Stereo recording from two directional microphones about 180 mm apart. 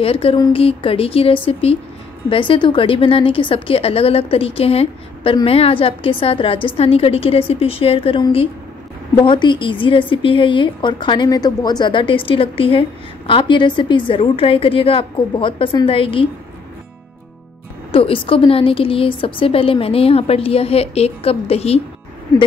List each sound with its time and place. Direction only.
0.0 s a woman's voice: 30° left (ahead or behind)
17.9 s a woman's voice: 30° left (ahead or behind)